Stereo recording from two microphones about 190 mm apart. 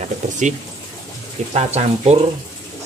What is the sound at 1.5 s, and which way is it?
Speech, 35° right (ahead or behind).